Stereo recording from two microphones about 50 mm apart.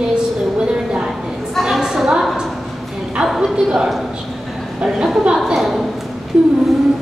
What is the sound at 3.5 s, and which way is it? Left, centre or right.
A man's voice, centre.